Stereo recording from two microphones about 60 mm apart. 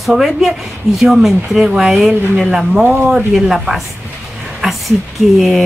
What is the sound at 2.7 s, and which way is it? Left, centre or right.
Speech, right.